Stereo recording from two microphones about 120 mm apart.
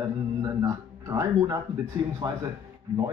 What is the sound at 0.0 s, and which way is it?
Speech, 30° right (ahead or behind).